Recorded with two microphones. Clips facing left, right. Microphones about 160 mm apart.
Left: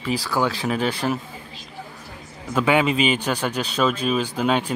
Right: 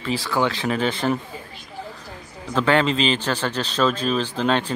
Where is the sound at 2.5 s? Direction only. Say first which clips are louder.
Even; 10° left (ahead or behind).